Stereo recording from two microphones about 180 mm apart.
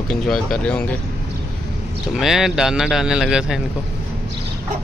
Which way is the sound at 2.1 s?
Centre (ahead or behind).